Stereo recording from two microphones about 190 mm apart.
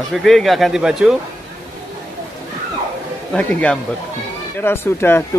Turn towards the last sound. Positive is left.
turn(degrees=10)  # may be behind; listen again after turning